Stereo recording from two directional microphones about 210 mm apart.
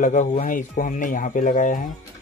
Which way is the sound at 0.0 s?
35° left (ahead or behind).